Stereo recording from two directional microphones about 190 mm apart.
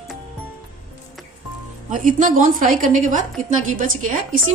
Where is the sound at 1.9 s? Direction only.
45° right (ahead or behind).